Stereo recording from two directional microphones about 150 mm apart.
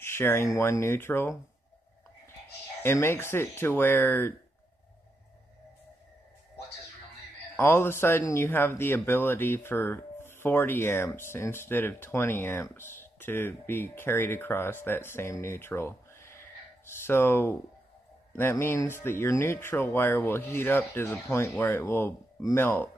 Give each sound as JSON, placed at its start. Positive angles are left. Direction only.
{"t": 0.0, "sound": "a man's voice", "side_deg": 15}
{"t": 2.8, "sound": "a man's voice", "side_deg": 15}
{"t": 7.5, "sound": "a man's voice", "side_deg": 15}